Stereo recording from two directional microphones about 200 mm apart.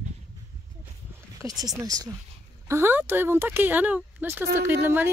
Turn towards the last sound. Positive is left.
turn(degrees=-10)  # may be behind; listen again after turning